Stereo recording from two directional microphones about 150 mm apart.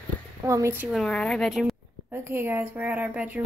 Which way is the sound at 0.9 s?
Centre (ahead or behind).